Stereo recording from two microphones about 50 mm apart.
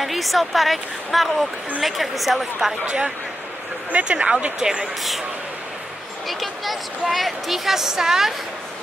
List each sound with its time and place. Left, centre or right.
0.0 s a woman's voice: centre
4.0 s speech: right
6.2 s a woman's voice: centre